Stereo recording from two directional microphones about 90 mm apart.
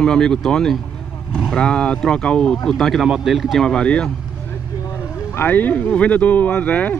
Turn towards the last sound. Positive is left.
turn(degrees=15)  # may be behind; listen again after turning